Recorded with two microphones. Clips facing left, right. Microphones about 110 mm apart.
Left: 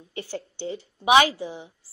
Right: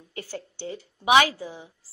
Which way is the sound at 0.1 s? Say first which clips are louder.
Left 3 dB; 25° left (ahead or behind).